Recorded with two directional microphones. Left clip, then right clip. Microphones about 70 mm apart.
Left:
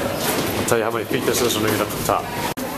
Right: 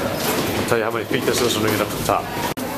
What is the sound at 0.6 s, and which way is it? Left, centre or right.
Speech, centre.